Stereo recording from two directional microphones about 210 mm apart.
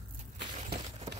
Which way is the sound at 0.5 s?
40° right (ahead or behind).